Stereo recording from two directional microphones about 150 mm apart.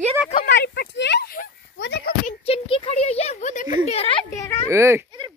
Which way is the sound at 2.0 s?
90° left.